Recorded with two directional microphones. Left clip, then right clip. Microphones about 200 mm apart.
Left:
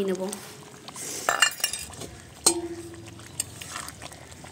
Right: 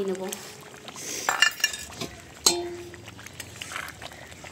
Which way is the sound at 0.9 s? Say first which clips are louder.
Even; 5° left (ahead or behind).